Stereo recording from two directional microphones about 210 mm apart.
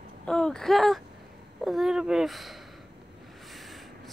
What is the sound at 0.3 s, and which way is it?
A woman's voice, 5° left (ahead or behind).